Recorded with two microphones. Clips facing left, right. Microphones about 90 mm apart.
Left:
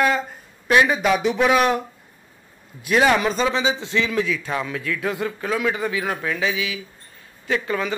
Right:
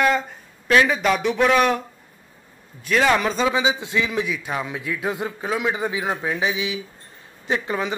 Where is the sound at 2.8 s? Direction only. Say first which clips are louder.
Left 1 dB; 10° left (ahead or behind).